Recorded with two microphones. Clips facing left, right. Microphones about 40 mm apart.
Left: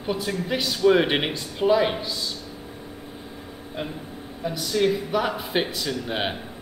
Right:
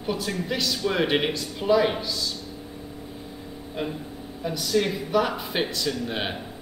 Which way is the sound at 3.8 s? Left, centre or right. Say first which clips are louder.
Right 2 dB; centre.